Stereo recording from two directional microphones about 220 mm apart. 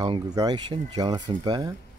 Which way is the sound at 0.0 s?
20° right (ahead or behind).